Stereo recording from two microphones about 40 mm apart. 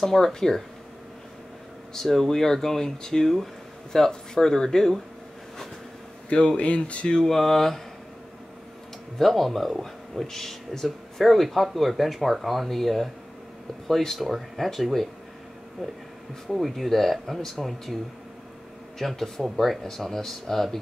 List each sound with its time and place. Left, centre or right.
0.0 s speech: centre
2.0 s speech: centre
6.2 s speech: left
7.1 s speech: centre
9.2 s speech: centre
18.9 s speech: centre